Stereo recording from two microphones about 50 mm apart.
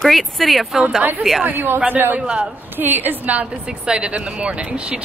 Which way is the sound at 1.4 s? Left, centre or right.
Right.